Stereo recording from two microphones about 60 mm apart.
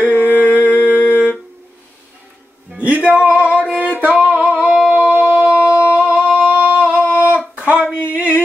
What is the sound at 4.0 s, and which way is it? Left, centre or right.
Singing, right.